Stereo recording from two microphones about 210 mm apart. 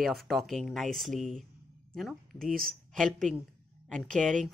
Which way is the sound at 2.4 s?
45° right (ahead or behind).